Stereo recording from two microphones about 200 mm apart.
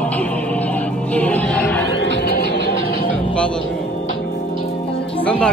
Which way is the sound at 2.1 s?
55° left (ahead or behind).